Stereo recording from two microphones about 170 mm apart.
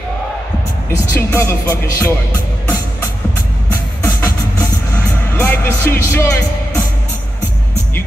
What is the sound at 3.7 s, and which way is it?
Music, 15° left (ahead or behind).